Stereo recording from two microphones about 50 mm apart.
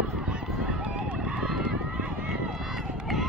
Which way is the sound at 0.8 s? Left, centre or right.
Right.